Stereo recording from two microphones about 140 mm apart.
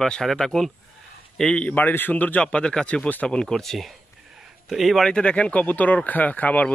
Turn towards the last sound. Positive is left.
turn(degrees=10)  # may be behind; listen again after turning